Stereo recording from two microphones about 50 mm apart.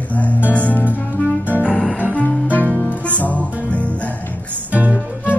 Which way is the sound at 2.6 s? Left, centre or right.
Right.